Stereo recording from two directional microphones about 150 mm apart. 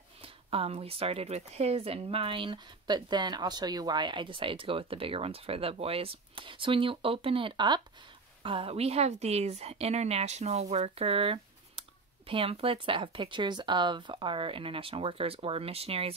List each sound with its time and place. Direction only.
0.2 s a woman's voice: 40° right (ahead or behind)